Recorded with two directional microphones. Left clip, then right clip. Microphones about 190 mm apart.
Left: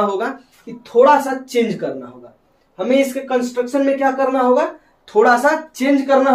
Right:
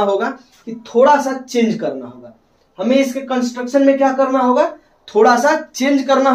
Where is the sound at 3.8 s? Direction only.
15° right (ahead or behind).